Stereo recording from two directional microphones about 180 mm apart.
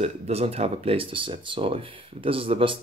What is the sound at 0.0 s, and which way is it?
Speech, 35° right (ahead or behind).